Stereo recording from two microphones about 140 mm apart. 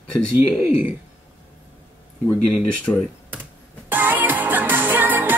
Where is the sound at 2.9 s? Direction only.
20° left (ahead or behind).